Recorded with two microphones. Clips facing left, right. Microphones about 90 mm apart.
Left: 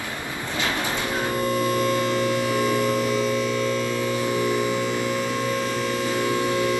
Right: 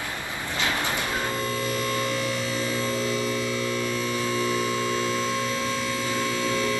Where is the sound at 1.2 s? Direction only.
20° left (ahead or behind).